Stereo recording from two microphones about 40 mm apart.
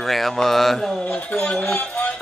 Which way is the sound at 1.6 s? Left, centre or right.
Left.